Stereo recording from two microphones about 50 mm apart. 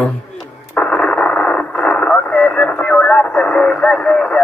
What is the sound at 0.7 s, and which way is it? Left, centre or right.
Radio, centre.